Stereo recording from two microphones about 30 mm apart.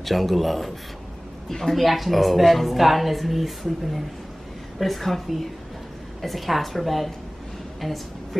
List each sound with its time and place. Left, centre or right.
0.0 s a woman's voice: centre
1.5 s speech: centre
1.8 s a woman's voice: centre